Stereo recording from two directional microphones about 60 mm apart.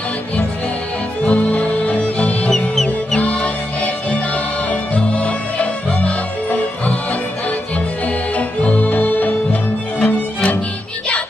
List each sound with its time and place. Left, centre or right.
1.2 s music: left
2.5 s music: centre
3.2 s music: left
8.4 s music: left